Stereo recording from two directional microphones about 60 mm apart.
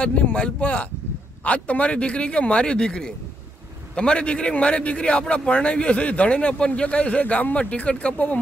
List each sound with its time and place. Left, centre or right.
0.0 s a man's voice: left